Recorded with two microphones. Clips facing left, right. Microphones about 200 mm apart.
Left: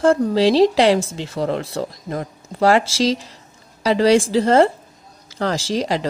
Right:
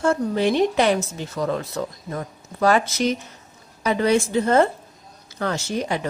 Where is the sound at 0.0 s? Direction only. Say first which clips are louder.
Left 5 dB; 90° left.